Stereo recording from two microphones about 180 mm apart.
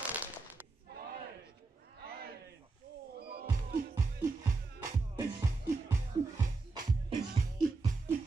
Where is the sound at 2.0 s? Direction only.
60° right (ahead or behind).